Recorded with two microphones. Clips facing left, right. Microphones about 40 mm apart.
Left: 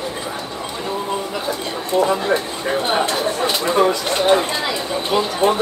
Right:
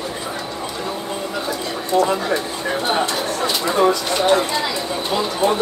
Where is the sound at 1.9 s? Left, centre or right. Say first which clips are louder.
Even; centre.